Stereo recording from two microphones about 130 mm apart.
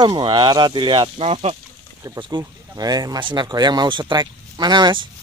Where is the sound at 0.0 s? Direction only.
35° right (ahead or behind); by 1.6 s 50° right (ahead or behind).